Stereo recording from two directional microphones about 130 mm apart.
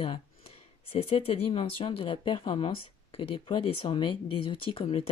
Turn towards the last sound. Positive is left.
turn(degrees=45)  # may be behind; listen again after turning